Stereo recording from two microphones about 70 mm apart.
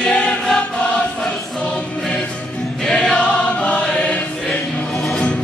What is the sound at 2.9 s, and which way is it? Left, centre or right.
Choir, centre.